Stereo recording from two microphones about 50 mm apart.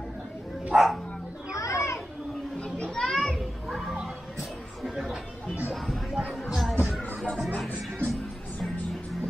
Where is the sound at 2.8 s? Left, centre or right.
Centre.